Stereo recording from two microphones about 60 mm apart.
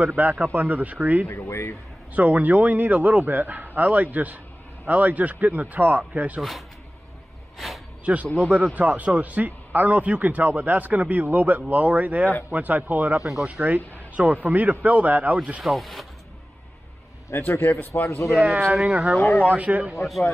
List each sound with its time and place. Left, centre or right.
0.0 s speech: right
1.2 s speech: left
2.1 s a man's voice: right
7.5 s a sound: centre
8.0 s a man's voice: right
15.6 s speech: centre
17.3 s a man's voice: left
18.0 s speech: left
18.5 s speech: right
18.8 s a man's voice: centre
19.1 s a man's voice: left
19.5 s a man's voice: right